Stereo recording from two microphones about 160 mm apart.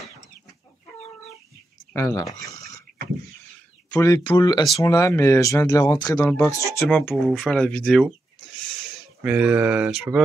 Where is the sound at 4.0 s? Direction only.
25° left (ahead or behind).